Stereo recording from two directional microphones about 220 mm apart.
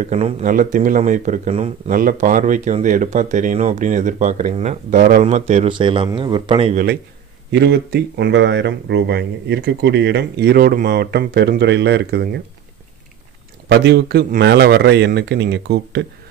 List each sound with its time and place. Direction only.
0.0 s speech: 35° right (ahead or behind)
6.7 s speech: 40° right (ahead or behind)
13.7 s speech: 50° right (ahead or behind)